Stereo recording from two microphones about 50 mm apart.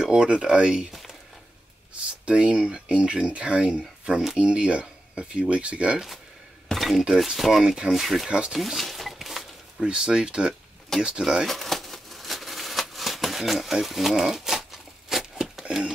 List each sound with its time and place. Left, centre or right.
0.0 s speech: centre
2.2 s speech: centre
4.2 s speech: centre
4.5 s speech: right
6.7 s speech: centre
8.3 s speech: centre
8.5 s a sound: centre
9.8 s speech: centre
11.4 s a sound: centre